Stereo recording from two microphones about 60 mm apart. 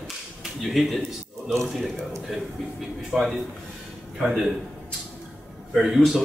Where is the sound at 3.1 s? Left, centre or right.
Left.